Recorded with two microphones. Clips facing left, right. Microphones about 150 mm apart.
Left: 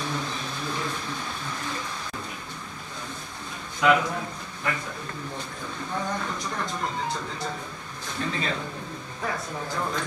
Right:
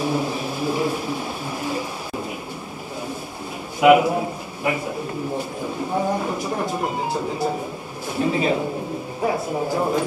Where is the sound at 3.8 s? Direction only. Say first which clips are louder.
Right 8 dB; 10° right (ahead or behind).